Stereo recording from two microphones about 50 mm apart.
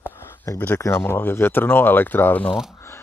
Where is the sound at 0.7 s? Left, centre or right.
Left.